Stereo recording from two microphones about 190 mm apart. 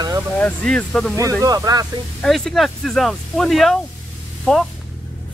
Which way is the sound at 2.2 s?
Centre (ahead or behind).